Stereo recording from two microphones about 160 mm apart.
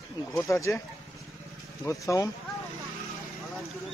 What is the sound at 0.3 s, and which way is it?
Speech, 20° left (ahead or behind).